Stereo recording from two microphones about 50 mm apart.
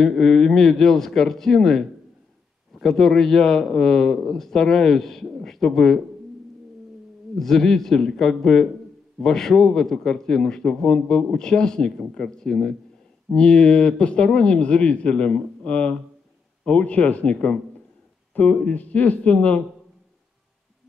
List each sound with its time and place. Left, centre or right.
0.0 s a man's voice: centre
7.3 s a man's voice: centre; by 19.6 s left